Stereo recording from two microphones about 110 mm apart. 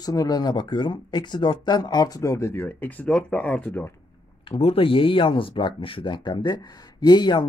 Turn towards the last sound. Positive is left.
turn(degrees=40)  # may be behind; listen again after turning